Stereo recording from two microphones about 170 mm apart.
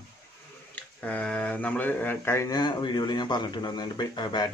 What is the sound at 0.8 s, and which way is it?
Speech, 10° left (ahead or behind).